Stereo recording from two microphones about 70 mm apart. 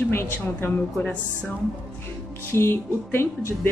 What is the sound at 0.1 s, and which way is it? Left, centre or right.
Speech, left.